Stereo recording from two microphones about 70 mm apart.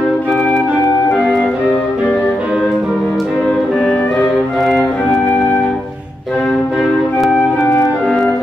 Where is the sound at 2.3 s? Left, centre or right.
Centre.